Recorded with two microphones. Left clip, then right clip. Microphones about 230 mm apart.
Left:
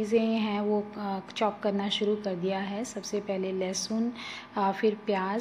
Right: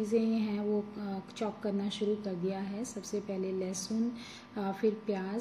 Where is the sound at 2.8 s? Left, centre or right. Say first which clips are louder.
Left 5 dB; left.